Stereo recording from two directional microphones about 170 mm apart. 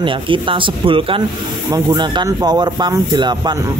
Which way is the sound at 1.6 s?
20° right (ahead or behind).